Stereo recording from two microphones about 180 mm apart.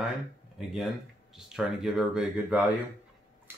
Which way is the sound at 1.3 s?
5° right (ahead or behind).